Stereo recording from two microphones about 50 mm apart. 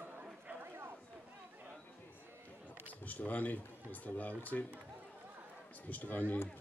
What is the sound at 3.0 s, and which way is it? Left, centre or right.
Speech, left.